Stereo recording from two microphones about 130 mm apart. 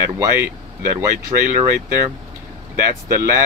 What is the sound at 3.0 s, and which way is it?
Speech, 20° right (ahead or behind).